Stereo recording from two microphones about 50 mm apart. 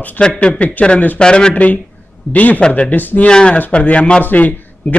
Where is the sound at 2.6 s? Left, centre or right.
Centre.